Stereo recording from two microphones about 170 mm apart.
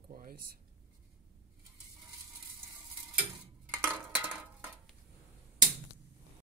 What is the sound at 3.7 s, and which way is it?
Dishes, 10° right (ahead or behind).